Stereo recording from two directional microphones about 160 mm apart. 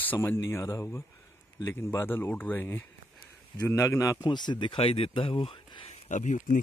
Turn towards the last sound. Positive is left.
turn(degrees=50)  # may be behind; listen again after turning